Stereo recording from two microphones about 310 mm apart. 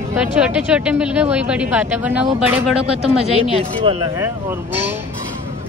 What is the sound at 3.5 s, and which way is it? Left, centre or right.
Speech, centre.